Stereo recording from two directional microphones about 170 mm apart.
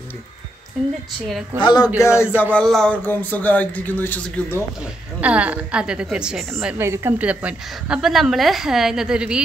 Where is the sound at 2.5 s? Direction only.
5° left (ahead or behind).